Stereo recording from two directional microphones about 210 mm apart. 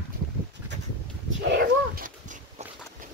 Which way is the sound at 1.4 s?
50° right (ahead or behind).